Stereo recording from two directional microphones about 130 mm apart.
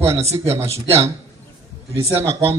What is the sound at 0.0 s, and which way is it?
Speech, 20° right (ahead or behind).